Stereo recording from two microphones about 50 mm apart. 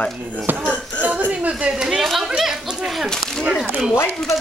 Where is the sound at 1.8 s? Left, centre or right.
Centre.